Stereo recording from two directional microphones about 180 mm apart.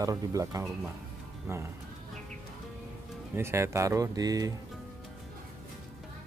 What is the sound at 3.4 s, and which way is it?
Speech, 15° right (ahead or behind).